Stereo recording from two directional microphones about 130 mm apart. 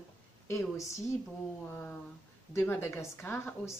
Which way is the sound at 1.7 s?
15° left (ahead or behind).